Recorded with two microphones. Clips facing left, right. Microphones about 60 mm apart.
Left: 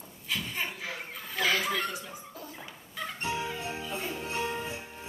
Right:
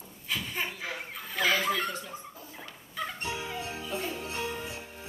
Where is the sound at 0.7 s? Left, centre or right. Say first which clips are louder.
Right 1 dB; centre.